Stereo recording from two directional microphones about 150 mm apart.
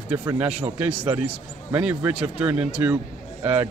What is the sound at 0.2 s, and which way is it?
A man's voice, 20° right (ahead or behind).